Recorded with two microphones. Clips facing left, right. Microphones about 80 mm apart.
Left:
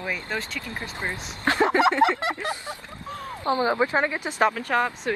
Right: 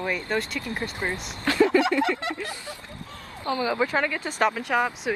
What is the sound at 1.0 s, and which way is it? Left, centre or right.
Mantra, centre.